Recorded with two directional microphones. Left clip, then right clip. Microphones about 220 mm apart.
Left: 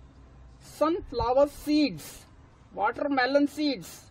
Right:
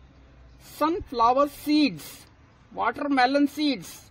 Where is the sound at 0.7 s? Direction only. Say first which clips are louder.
Right 2 dB; 40° right (ahead or behind).